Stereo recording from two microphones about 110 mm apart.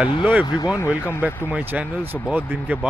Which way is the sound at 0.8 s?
20° left (ahead or behind).